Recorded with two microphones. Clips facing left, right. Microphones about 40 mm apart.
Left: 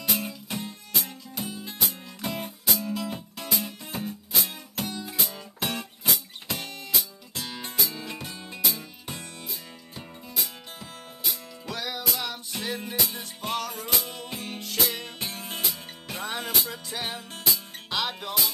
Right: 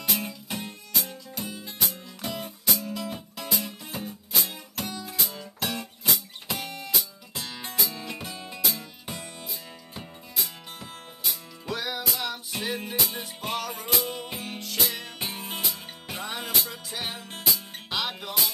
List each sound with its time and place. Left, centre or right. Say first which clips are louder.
0.0 s music: even; centre
2.0 s music: left 1 dB; left
2.4 s music: left 1 dB; centre
6.0 s music: even; centre
15.1 s music: right 1 dB; centre